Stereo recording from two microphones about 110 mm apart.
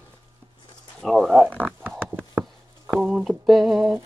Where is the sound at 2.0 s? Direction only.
20° right (ahead or behind).